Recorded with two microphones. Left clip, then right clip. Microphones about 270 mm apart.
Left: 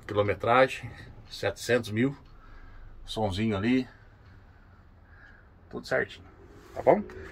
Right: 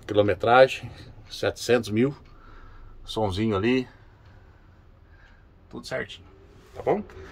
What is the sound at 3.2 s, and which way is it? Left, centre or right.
Speech, centre.